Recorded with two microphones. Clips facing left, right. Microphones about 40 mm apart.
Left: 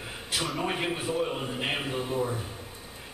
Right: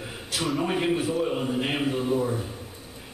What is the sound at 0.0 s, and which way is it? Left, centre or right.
A man's voice, centre.